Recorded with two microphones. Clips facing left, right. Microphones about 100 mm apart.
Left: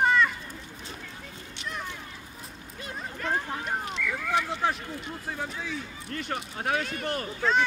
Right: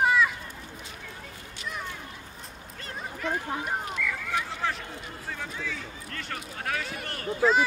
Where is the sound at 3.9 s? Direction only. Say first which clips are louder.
Left 2 dB; 25° left (ahead or behind).